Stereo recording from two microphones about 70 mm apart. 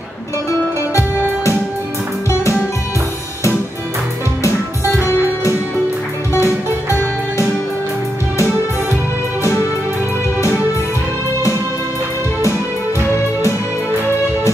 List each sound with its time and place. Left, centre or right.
6.3 s music: left